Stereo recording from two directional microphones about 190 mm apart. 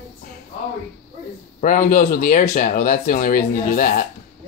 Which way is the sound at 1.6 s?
45° left (ahead or behind).